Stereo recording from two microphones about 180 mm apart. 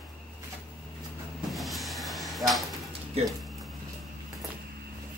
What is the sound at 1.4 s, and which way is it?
Cupboard open or close, centre (ahead or behind).